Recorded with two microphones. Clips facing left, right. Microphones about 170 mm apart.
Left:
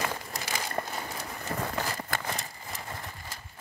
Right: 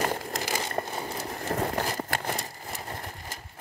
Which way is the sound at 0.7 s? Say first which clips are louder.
Right 2 dB; 20° right (ahead or behind).